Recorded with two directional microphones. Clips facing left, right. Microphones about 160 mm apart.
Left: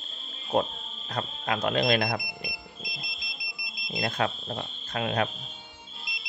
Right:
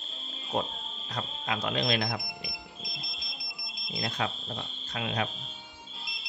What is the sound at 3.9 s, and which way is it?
Speech, 55° left (ahead or behind).